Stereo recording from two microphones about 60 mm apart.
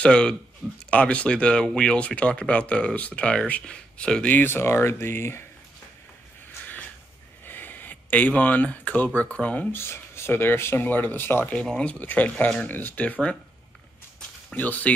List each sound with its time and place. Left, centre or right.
0.0 s speech: centre
4.4 s speech: left
6.6 s a sound: left
7.4 s speech: left
9.7 s speech: left
11.6 s speech: centre
14.5 s speech: left